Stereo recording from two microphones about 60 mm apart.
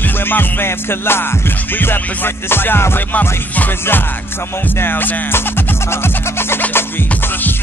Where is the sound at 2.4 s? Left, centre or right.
Left.